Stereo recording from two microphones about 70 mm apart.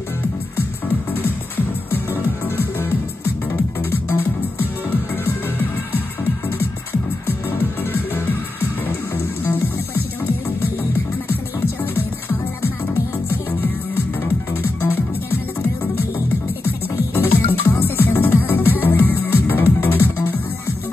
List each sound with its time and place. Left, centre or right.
1.9 s music: left
6.6 s music: left
11.8 s music: left
16.6 s music: left